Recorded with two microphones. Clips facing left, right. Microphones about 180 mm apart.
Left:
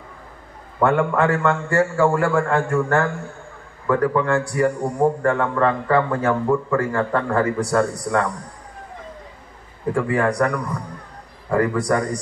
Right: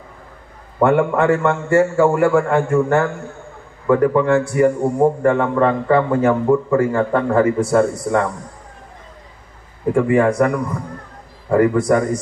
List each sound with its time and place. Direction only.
0.7 s a man's voice: 25° right (ahead or behind)
9.9 s a man's voice: 20° right (ahead or behind)